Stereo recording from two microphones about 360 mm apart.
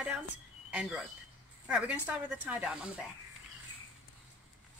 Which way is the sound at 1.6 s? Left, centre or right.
Centre.